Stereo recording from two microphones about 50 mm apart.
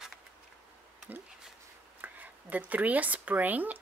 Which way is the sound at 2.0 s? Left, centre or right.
Right.